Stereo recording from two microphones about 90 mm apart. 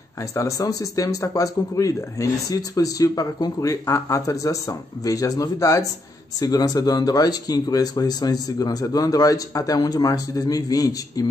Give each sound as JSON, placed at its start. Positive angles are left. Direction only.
{"t": 0.3, "sound": "speech", "side_deg": 35}
{"t": 3.8, "sound": "speech", "side_deg": 35}